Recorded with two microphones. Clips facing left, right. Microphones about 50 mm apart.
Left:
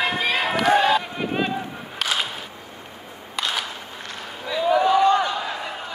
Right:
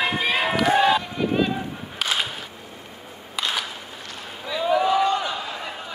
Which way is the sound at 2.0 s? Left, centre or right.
Centre.